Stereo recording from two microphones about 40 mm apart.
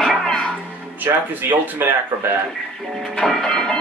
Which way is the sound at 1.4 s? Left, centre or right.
Right.